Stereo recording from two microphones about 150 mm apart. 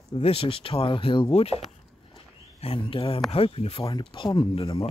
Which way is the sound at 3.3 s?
40° left (ahead or behind).